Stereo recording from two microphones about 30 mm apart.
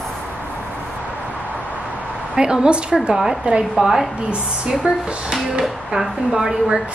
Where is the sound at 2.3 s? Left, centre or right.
Right.